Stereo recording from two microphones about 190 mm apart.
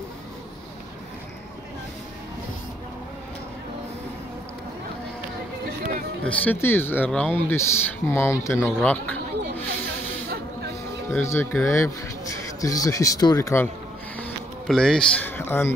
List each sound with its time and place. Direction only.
6.2 s speech: 10° left (ahead or behind)
11.1 s speech: 15° left (ahead or behind)
14.1 s a sound: 5° left (ahead or behind)